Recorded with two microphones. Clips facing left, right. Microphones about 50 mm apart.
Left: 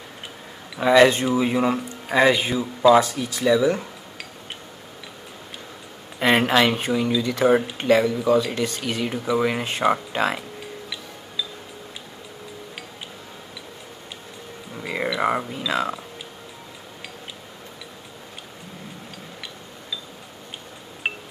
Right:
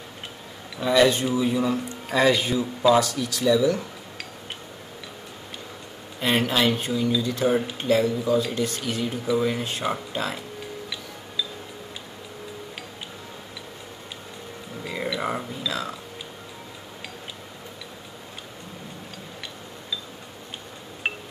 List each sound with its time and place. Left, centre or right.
0.7 s speech: left
2.0 s speech: centre
6.1 s a sound: left
6.8 s speech: left
9.1 s speech: left
9.4 s speech: left
14.8 s music: left
15.7 s a sound: left
21.0 s music: centre